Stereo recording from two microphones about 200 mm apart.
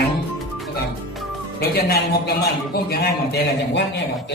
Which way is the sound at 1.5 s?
50° left (ahead or behind).